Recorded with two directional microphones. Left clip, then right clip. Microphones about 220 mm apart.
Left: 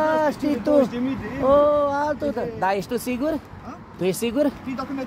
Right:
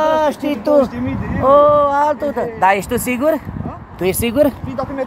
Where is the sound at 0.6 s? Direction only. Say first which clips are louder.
Right 6 dB; 5° right (ahead or behind).